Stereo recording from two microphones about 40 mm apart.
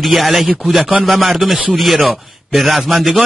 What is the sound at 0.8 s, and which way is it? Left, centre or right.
Speech, right.